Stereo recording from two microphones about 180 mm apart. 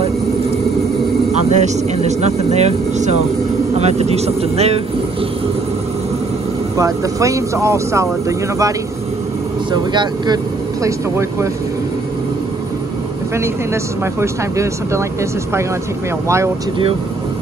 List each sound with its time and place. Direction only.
1.5 s speech: 40° right (ahead or behind)
6.8 s speech: 15° right (ahead or behind)
14.2 s speech: 15° right (ahead or behind)